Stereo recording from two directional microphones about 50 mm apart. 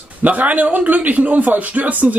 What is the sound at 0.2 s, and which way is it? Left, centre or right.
Speech, right.